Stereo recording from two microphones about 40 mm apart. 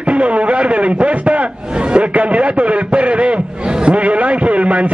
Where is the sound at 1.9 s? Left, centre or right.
Right.